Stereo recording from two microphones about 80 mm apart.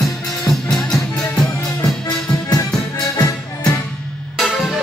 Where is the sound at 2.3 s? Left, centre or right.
Left.